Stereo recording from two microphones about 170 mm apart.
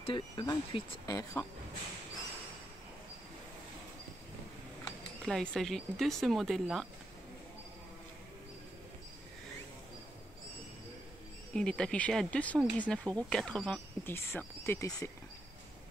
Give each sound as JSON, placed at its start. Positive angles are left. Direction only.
{"t": 0.0, "sound": "speech", "side_deg": 30}
{"t": 5.2, "sound": "speech", "side_deg": 5}
{"t": 11.5, "sound": "speech", "side_deg": 5}